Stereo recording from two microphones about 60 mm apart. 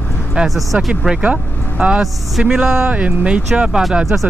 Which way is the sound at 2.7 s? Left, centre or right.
Right.